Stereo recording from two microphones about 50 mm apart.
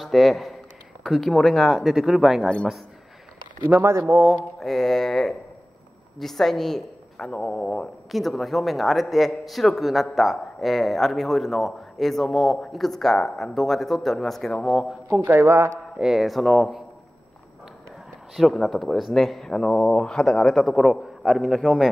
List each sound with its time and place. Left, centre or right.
0.0 s a man's voice: centre
3.7 s speech: right
4.3 s a sound: centre
6.1 s a man's voice: centre
8.1 s speech: centre
15.0 s speech: right
15.3 s a man's voice: right
16.0 s speech: centre
18.3 s speech: centre
19.5 s a man's voice: centre